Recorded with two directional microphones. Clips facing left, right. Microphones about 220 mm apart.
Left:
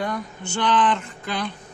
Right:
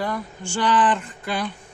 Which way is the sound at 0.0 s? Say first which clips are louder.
Even; 5° right (ahead or behind).